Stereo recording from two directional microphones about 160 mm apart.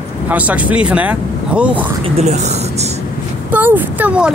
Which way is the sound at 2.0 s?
45° right (ahead or behind).